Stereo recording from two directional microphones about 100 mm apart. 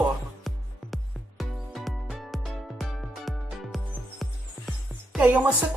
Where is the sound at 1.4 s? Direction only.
Centre (ahead or behind).